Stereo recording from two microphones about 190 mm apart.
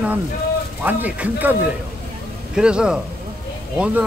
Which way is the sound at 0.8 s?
10° right (ahead or behind).